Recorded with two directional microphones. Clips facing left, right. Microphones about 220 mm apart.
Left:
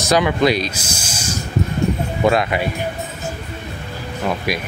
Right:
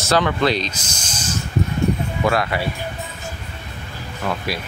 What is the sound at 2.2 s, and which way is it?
Speech, 20° left (ahead or behind).